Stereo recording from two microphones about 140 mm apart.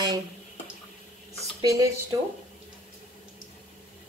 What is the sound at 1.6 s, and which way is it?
Speech, 25° right (ahead or behind).